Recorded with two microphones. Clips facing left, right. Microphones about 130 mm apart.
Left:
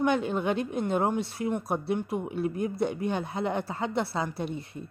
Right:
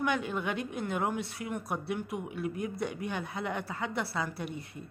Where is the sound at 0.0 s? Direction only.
30° left (ahead or behind).